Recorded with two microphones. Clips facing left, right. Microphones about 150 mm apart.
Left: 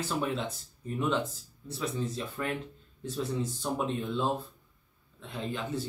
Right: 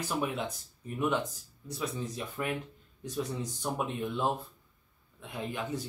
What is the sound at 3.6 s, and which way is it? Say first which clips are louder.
Speech: right 1 dB; 10° right (ahead or behind).